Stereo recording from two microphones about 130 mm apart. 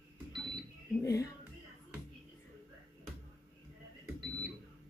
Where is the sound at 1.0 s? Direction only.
25° left (ahead or behind).